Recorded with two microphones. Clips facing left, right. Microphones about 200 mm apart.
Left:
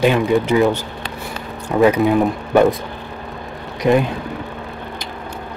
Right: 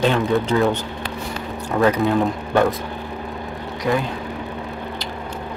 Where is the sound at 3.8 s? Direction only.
20° left (ahead or behind).